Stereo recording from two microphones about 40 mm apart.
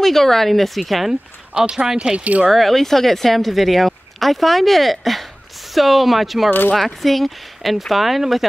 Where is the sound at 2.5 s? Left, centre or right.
Centre.